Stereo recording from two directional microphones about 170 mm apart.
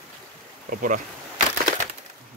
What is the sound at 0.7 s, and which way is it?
Speech, 55° right (ahead or behind).